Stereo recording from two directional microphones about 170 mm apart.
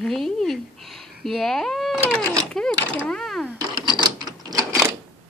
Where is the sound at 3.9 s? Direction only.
25° right (ahead or behind).